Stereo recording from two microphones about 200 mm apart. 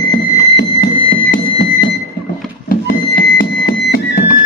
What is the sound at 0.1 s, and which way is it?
Music, 55° left (ahead or behind).